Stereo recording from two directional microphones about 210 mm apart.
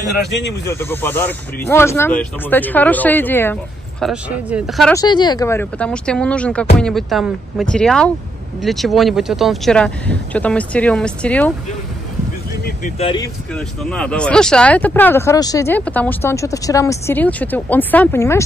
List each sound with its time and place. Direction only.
0.7 s speech: 10° left (ahead or behind)
4.0 s speech: 5° right (ahead or behind)
4.9 s speech: 20° left (ahead or behind)
13.0 s speech: 25° left (ahead or behind)
13.6 s speech: 5° left (ahead or behind)